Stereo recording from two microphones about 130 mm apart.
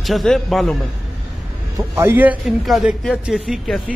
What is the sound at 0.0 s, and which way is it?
Speech, centre (ahead or behind).